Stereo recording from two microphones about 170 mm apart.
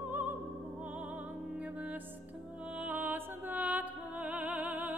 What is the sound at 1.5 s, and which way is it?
Music, 10° right (ahead or behind).